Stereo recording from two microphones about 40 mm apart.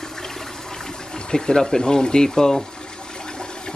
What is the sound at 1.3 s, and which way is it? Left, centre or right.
Speech, centre.